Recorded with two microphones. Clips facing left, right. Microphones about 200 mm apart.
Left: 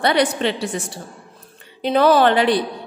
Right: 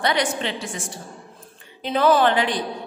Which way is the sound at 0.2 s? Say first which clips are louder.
Left 6 dB; 60° left (ahead or behind).